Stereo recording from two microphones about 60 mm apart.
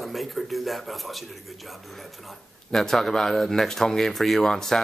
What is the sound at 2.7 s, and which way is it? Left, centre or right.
Speech, centre.